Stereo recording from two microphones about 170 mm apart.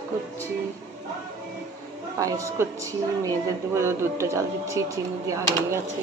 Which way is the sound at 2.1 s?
20° right (ahead or behind).